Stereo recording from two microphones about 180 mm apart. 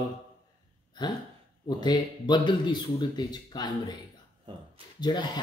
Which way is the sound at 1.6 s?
25° left (ahead or behind).